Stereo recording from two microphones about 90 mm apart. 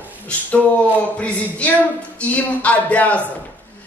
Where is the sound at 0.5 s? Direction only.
15° left (ahead or behind).